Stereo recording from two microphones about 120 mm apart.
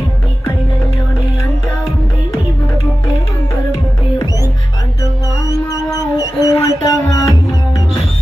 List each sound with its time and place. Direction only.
5.0 s music: 30° left (ahead or behind)